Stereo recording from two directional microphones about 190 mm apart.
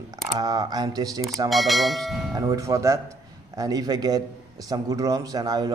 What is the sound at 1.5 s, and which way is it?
Speech, centre (ahead or behind).